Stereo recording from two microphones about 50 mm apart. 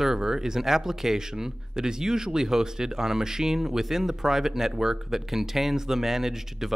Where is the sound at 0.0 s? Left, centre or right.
Centre.